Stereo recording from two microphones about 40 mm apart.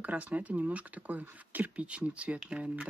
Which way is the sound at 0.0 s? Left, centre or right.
Right.